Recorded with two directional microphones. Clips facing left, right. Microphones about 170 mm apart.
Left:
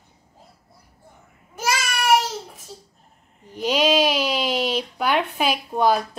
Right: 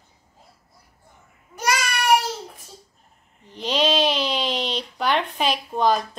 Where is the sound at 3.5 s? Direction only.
10° left (ahead or behind).